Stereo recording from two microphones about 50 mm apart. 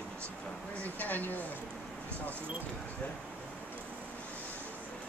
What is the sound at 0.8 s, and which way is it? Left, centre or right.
Speech, left.